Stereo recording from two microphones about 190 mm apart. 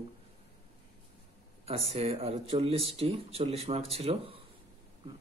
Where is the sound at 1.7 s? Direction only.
30° right (ahead or behind).